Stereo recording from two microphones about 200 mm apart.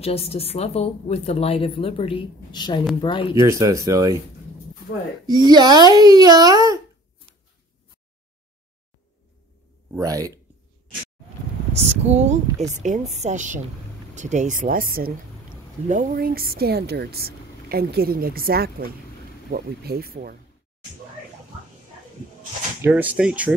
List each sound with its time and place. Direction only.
0.0 s speech: 30° left (ahead or behind)
3.4 s speech: 15° right (ahead or behind)
5.2 s speech: 20° right (ahead or behind)
9.8 s speech: 15° right (ahead or behind)
11.7 s speech: 30° right (ahead or behind); by 20.3 s 50° right (ahead or behind)
22.8 s speech: 5° right (ahead or behind)